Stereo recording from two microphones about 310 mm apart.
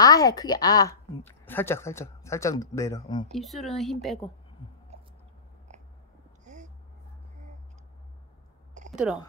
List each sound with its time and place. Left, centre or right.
0.0 s speech: centre
3.3 s speech: centre
6.4 s a sound: right
8.9 s speech: centre